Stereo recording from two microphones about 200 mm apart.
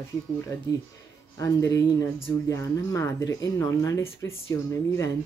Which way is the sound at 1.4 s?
15° left (ahead or behind).